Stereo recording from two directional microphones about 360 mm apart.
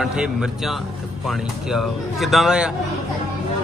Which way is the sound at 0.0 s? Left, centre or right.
Centre.